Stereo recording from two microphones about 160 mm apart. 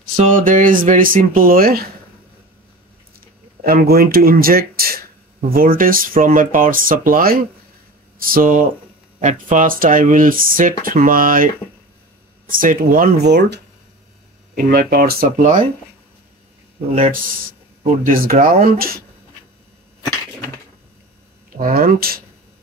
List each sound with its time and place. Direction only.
0.3 s speech: 55° right (ahead or behind)
3.6 s speech: 70° right (ahead or behind)
14.5 s speech: 70° right (ahead or behind)
17.0 s speech: 60° right (ahead or behind)
21.5 s speech: 65° right (ahead or behind)